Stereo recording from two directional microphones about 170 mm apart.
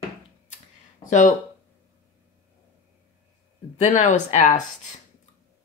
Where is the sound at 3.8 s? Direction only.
45° left (ahead or behind).